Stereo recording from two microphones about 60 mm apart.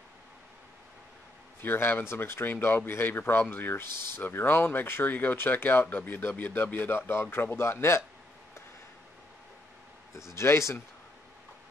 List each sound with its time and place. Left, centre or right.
1.6 s speech: left
10.3 s speech: left